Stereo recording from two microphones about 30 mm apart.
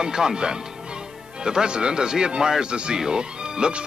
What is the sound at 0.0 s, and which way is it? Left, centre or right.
Speech, right.